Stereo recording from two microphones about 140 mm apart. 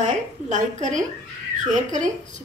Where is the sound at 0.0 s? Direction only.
60° right (ahead or behind).